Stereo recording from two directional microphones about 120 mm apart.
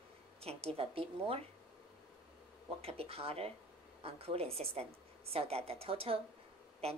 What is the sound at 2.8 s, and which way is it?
A woman's voice, 55° right (ahead or behind).